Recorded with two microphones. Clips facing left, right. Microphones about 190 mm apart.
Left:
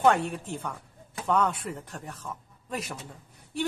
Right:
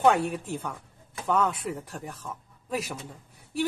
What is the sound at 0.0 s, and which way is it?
A woman's voice, 5° right (ahead or behind).